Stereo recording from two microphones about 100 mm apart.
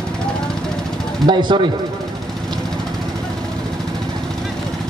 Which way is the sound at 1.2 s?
50° right (ahead or behind).